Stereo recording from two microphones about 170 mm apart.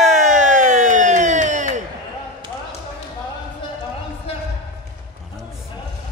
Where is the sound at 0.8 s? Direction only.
50° right (ahead or behind).